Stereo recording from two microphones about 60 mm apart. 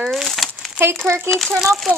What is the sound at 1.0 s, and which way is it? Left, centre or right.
Speech, right.